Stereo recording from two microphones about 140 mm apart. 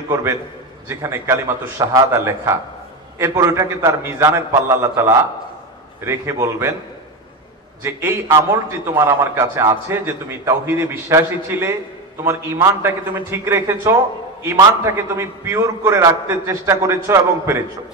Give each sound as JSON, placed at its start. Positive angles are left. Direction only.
{"t": 0.1, "sound": "a man's voice", "side_deg": -20}
{"t": 7.8, "sound": "a man's voice", "side_deg": -15}